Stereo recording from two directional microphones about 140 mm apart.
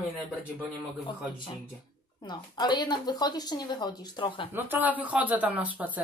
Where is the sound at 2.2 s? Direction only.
30° left (ahead or behind).